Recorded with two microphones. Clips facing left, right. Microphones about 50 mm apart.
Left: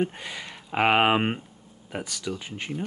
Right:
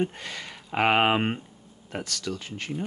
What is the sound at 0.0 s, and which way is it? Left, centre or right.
Speech, centre.